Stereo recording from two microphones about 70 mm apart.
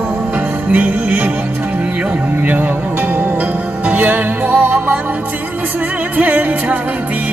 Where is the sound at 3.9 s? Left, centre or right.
Right.